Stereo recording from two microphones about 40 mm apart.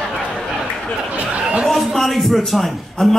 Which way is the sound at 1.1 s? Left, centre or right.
Right.